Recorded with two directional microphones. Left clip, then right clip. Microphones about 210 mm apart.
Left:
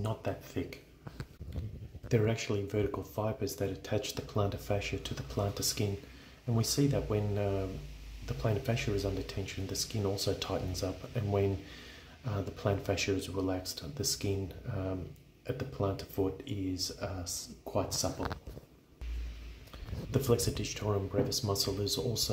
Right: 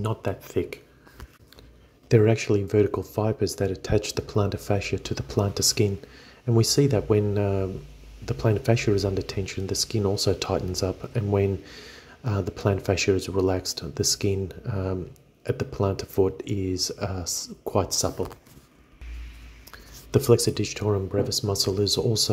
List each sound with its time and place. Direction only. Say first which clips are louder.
0.0 s speech: right 7 dB; 30° right (ahead or behind)
2.0 s speech: right 11 dB; 25° right (ahead or behind)
20.1 s speech: right 10 dB; 30° right (ahead or behind)